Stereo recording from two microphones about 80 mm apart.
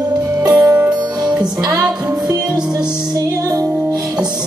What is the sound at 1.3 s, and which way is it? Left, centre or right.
Music, right.